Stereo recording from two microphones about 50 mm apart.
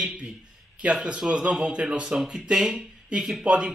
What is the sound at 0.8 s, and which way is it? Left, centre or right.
Speech, right.